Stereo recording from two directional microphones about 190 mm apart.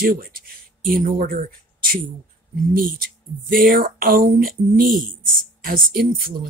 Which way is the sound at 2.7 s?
50° right (ahead or behind).